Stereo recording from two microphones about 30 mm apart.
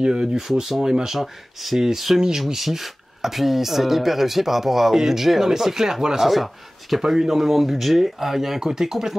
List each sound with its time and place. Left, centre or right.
0.0 s speech: right; by 1.8 s centre
2.1 s speech: centre
6.3 s speech: centre
7.0 s speech: centre